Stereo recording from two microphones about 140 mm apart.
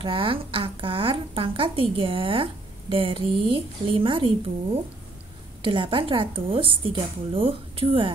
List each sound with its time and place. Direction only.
0.0 s a woman's voice: 40° right (ahead or behind)
5.6 s a woman's voice: 35° right (ahead or behind)